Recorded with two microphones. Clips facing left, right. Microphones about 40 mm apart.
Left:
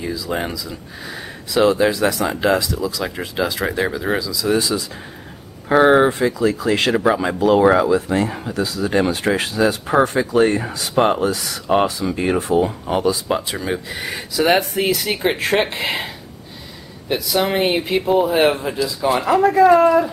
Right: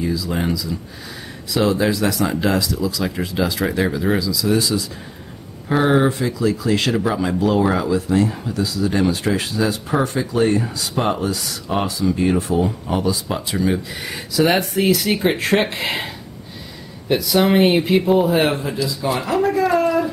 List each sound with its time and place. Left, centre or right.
0.0 s speech: centre
17.1 s speech: centre